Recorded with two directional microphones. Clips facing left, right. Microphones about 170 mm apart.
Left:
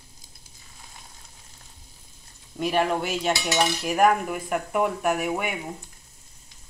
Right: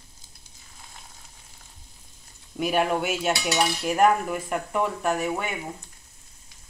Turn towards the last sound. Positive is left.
turn(degrees=10)  # may be behind; listen again after turning